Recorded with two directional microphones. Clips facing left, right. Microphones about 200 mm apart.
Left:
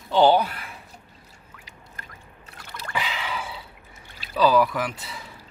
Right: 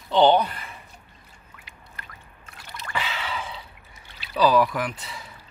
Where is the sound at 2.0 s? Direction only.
45° left (ahead or behind).